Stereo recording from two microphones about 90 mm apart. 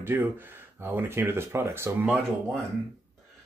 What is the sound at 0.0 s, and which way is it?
Speech, 25° right (ahead or behind).